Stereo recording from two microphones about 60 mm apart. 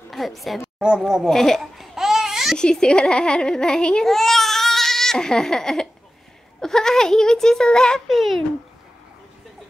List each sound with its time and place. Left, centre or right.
0.1 s a woman's voice: centre
0.7 s speech: centre
1.2 s a child's voice: centre
1.6 s a sound: centre
2.5 s a child's voice: centre
4.1 s baby cry: centre
6.6 s a child's voice: centre
8.1 s speech: centre